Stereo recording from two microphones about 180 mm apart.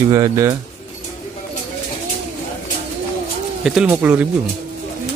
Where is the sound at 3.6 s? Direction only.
5° right (ahead or behind).